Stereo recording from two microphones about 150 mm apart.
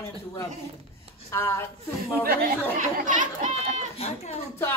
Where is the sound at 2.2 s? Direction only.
75° right (ahead or behind); by 3.9 s 55° right (ahead or behind).